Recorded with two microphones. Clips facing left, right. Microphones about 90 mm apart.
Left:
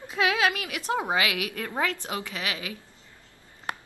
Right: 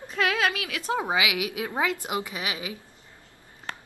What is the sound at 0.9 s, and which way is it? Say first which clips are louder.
A woman's voice: even; 10° right (ahead or behind).